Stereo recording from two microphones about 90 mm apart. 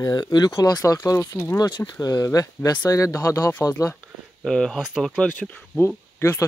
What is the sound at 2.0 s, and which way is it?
Speech, 45° left (ahead or behind).